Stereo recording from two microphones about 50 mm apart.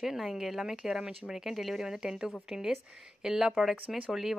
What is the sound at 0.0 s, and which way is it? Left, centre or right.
Speech, centre.